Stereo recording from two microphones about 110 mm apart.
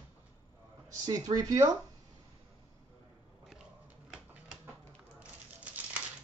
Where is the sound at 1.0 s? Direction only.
35° right (ahead or behind).